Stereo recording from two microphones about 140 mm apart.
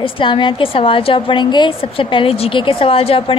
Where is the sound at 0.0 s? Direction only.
35° left (ahead or behind).